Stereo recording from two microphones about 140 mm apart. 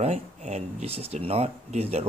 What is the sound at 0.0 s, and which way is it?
Speech, 50° right (ahead or behind).